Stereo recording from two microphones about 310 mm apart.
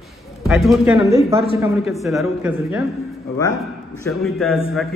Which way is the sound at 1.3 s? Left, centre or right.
Centre.